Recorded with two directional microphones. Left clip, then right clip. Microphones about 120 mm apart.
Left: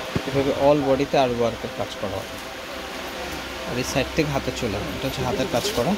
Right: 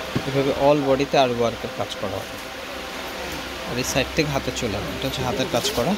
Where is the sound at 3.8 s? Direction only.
5° left (ahead or behind).